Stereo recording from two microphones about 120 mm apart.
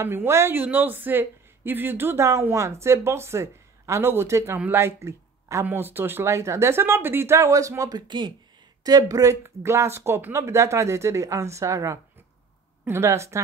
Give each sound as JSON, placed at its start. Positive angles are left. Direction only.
{"t": 0.0, "sound": "speech", "side_deg": -20}